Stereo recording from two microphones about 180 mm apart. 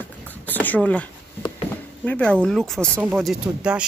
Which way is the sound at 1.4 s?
25° left (ahead or behind).